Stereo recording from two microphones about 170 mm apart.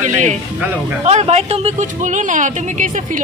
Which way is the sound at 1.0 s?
40° right (ahead or behind).